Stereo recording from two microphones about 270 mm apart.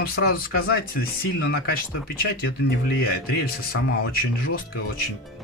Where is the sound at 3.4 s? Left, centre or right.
Left.